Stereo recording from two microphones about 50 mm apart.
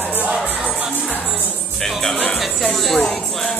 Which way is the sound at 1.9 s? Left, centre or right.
Centre.